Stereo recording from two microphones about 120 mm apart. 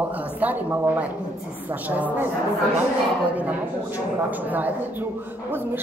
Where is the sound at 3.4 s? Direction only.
15° right (ahead or behind).